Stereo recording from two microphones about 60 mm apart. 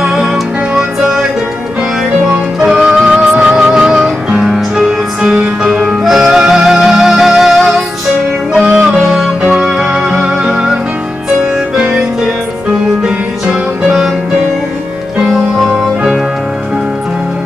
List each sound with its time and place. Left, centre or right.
0.0 s music: centre
2.6 s music: centre
5.3 s music: centre
5.7 s music: centre
8.5 s music: centre
9.0 s music: centre
9.5 s music: centre
15.1 s music: centre